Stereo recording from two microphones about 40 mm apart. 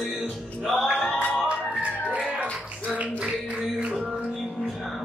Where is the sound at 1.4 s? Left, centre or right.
Right.